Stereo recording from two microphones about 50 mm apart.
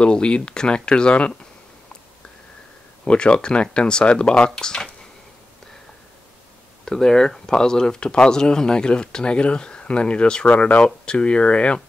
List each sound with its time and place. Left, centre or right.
0.0 s speech: centre
3.1 s speech: centre
6.8 s speech: centre